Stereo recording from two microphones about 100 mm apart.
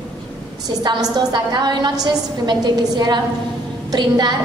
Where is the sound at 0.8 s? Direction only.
45° right (ahead or behind).